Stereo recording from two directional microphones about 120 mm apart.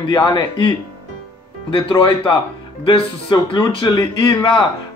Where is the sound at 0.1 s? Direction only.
30° left (ahead or behind).